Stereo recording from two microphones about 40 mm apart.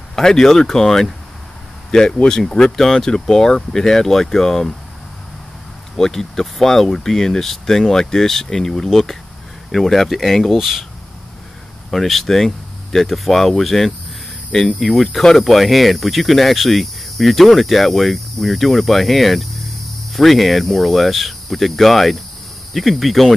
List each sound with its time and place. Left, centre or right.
0.1 s speech: centre
5.9 s speech: centre
10.5 s cricket: centre
11.9 s cricket: centre